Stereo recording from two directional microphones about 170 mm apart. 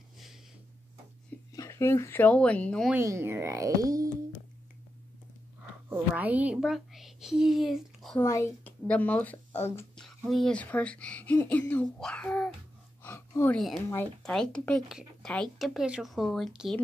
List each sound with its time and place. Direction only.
1.5 s a woman's voice: 20° left (ahead or behind)
2.9 s speech: 15° right (ahead or behind)
5.9 s a woman's voice: 10° right (ahead or behind)
8.2 s speech: 15° left (ahead or behind)
13.0 s a sound: 15° left (ahead or behind)
13.6 s speech: centre (ahead or behind)